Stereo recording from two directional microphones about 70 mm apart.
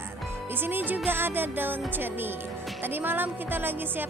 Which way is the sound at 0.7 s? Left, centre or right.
Right.